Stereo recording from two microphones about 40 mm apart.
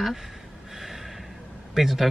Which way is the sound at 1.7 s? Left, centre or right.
Centre.